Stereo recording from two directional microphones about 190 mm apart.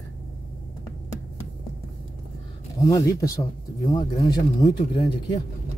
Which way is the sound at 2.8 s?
20° left (ahead or behind).